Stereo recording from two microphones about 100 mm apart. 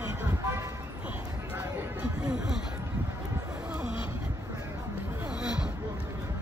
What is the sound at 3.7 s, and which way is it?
Vehicle, 10° right (ahead or behind).